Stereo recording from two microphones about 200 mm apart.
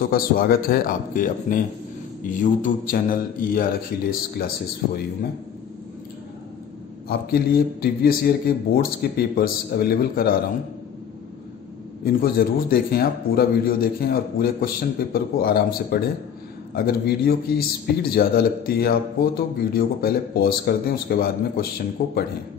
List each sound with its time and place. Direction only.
0.0 s a man's voice: 45° left (ahead or behind)
7.1 s a man's voice: 50° left (ahead or behind)
12.0 s a man's voice: 50° left (ahead or behind)